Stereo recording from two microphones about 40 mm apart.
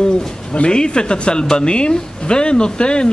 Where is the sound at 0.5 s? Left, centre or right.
Left.